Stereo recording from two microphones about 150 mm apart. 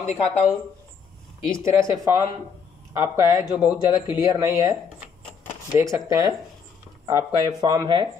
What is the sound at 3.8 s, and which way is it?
Speech, 30° left (ahead or behind).